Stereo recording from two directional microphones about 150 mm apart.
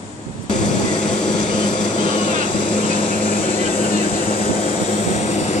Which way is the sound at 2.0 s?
30° left (ahead or behind).